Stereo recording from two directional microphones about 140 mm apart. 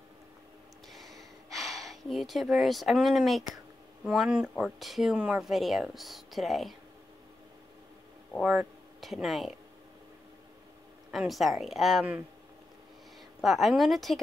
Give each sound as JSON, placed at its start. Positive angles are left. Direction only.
{"t": 0.8, "sound": "a sound", "side_deg": 0}
{"t": 4.0, "sound": "speech", "side_deg": -5}
{"t": 8.5, "sound": "speech", "side_deg": -5}
{"t": 11.1, "sound": "speech", "side_deg": 0}
{"t": 13.4, "sound": "speech", "side_deg": 0}